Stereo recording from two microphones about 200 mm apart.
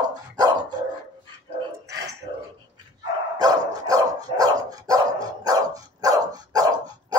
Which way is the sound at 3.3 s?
20° right (ahead or behind).